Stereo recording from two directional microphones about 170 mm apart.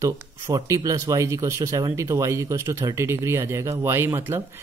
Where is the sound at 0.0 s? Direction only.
20° right (ahead or behind).